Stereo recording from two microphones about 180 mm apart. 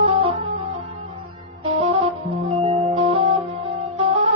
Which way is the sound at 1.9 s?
35° right (ahead or behind).